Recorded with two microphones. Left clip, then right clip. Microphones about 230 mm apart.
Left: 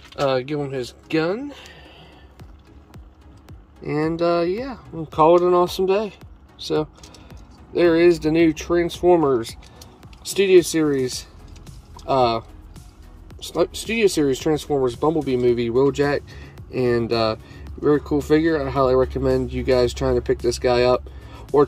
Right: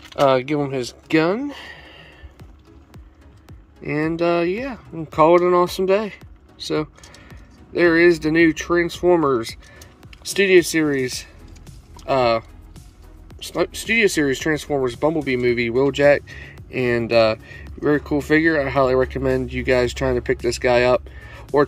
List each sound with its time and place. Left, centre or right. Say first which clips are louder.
0.1 s speech: right 5 dB; right
4.1 s speech: right 1 dB; centre
10.2 s speech: even; centre
11.6 s music: right 1 dB; centre
13.4 s speech: left 1 dB; centre